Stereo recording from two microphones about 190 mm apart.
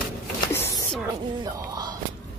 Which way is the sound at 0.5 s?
15° left (ahead or behind).